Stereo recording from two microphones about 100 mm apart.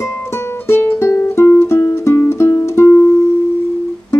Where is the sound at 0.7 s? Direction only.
25° left (ahead or behind).